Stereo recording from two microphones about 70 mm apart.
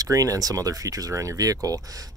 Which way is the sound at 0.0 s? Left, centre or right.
Right.